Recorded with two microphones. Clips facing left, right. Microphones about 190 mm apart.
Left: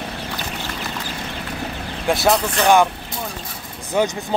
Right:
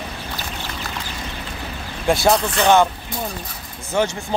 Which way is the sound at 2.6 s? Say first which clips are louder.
Even; 10° left (ahead or behind).